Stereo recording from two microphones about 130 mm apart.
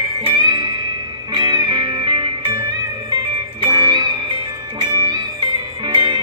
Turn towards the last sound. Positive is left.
turn(degrees=-35)  # may be behind; listen again after turning